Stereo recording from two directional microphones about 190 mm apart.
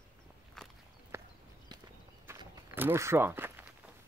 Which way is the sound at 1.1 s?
15° right (ahead or behind).